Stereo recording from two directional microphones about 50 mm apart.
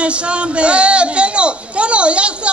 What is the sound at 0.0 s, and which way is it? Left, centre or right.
Speech, right.